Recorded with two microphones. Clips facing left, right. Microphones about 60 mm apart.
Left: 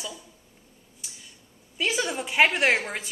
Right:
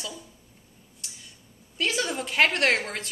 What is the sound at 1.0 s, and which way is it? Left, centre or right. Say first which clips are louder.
Tick-tock: even; centre.